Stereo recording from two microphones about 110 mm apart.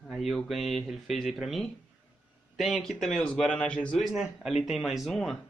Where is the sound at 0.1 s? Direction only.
Centre (ahead or behind).